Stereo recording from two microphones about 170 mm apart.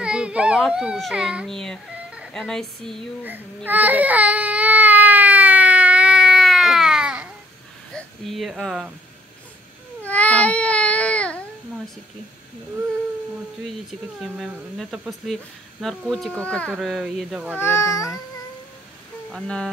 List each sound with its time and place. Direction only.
0.0 s a child's voice: 5° right (ahead or behind)
3.3 s baby cry: 10° right (ahead or behind)
7.9 s speech: centre (ahead or behind)
10.0 s baby cry: 10° left (ahead or behind)
13.8 s a child's voice: centre (ahead or behind)
17.6 s a child's voice: 15° left (ahead or behind)
19.3 s speech: 5° left (ahead or behind)